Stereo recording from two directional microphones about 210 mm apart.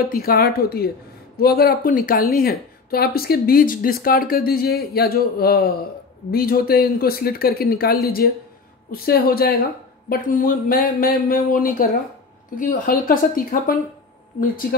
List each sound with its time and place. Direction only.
0.0 s speech: 45° left (ahead or behind)